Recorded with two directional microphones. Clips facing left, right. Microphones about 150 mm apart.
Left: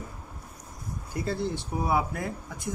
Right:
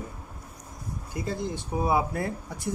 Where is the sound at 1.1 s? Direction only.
15° right (ahead or behind).